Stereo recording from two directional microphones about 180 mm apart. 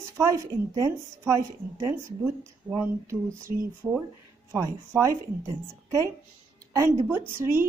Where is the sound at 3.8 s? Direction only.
20° right (ahead or behind).